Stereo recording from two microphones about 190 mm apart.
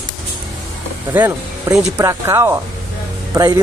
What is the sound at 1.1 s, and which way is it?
Speech, 10° right (ahead or behind).